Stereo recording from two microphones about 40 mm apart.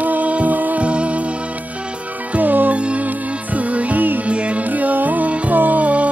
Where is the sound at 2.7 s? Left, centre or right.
Right.